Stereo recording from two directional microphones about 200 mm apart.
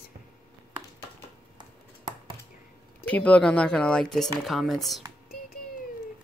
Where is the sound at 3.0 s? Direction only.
5° left (ahead or behind).